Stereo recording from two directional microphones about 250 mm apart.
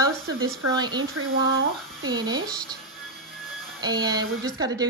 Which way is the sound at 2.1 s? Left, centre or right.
Centre.